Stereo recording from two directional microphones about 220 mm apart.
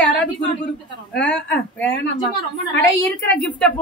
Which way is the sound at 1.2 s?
5° left (ahead or behind).